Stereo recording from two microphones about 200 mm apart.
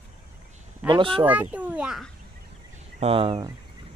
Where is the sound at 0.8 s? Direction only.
25° right (ahead or behind).